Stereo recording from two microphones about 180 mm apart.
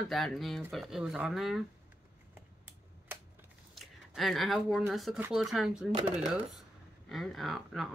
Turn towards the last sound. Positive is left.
turn(degrees=0)  # may be behind; listen again after turning